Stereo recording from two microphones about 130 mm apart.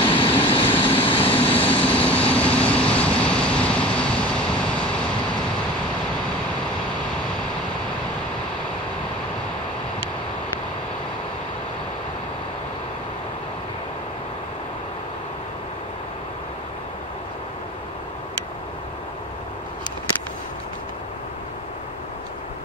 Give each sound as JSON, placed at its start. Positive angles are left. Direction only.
{"t": 0.0, "sound": "vehicle", "side_deg": 40}
{"t": 1.9, "sound": "vehicle", "side_deg": 10}